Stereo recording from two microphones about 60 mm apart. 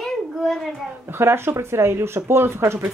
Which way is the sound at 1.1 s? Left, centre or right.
Right.